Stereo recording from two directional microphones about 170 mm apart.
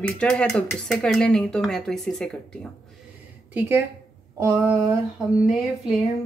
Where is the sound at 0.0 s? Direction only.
5° left (ahead or behind).